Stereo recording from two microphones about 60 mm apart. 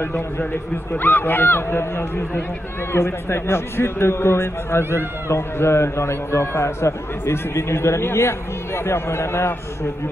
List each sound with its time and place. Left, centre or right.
0.9 s a man's voice: left